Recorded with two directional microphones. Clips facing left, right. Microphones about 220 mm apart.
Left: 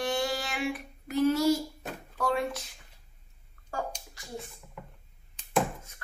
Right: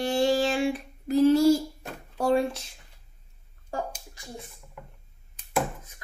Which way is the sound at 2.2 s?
30° right (ahead or behind).